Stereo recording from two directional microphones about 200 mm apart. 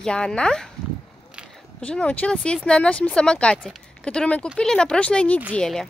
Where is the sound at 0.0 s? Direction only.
5° left (ahead or behind).